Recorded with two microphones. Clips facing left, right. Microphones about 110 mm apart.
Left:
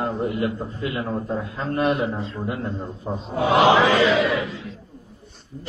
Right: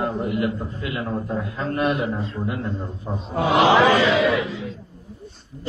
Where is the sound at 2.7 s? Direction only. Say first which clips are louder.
Even; centre (ahead or behind).